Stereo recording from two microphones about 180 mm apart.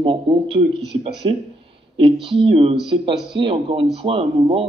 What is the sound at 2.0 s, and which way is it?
A man's voice, 30° right (ahead or behind).